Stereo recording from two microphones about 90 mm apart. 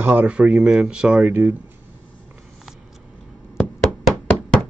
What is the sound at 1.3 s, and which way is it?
Speech, 20° right (ahead or behind).